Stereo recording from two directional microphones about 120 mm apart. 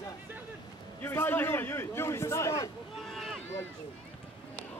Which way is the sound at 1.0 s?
20° left (ahead or behind).